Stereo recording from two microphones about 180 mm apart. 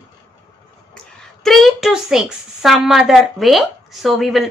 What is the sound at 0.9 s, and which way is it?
A woman's voice, centre (ahead or behind).